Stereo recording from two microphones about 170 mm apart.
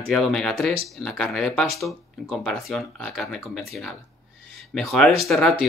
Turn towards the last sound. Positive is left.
turn(degrees=0)  # may be behind; listen again after turning